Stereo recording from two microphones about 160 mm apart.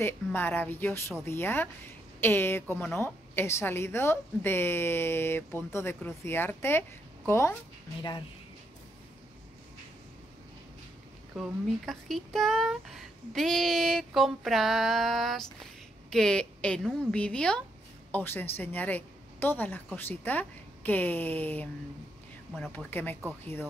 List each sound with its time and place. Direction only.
0.0 s a woman's voice: 15° left (ahead or behind)
11.3 s a woman's voice: centre (ahead or behind)
22.8 s a woman's voice: 10° left (ahead or behind)